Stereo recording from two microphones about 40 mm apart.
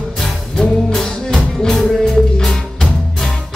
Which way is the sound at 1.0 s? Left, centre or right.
Centre.